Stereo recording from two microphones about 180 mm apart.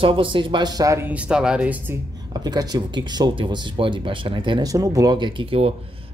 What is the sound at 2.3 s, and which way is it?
Speech, 20° right (ahead or behind).